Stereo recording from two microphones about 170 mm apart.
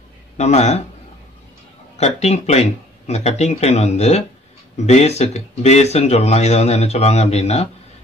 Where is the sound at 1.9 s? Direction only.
40° left (ahead or behind).